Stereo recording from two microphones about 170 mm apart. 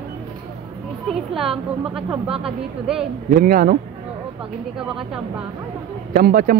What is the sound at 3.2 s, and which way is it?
Speech, 55° right (ahead or behind).